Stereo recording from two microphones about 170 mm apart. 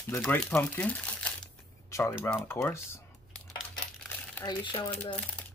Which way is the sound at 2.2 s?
15° left (ahead or behind).